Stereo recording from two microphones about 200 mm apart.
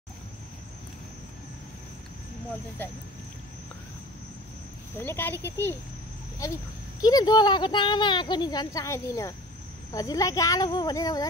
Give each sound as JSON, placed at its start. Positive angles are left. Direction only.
{"t": 4.9, "sound": "speech", "side_deg": 10}
{"t": 7.0, "sound": "speech", "side_deg": 20}